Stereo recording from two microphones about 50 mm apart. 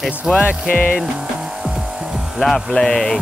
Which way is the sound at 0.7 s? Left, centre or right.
Left.